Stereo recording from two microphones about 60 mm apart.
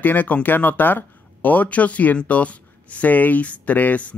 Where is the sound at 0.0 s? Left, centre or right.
Left.